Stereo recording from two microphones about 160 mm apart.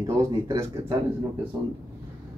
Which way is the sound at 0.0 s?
20° right (ahead or behind).